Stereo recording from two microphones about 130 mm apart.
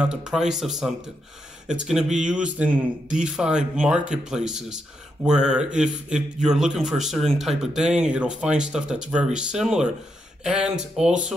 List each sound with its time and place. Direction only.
0.0 s speech: 5° right (ahead or behind)